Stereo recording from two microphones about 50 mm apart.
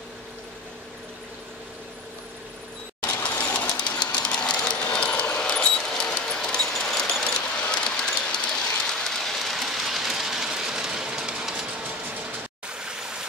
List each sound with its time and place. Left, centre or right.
3.0 s mechanisms: left
3.7 s train: centre
4.9 s a sound: left
7.8 s train: centre
12.6 s stream: centre